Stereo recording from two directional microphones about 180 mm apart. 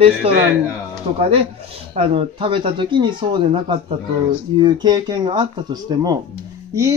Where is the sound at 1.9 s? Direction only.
30° right (ahead or behind).